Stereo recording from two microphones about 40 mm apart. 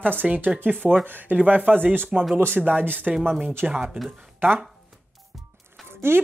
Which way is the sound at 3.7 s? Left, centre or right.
Right.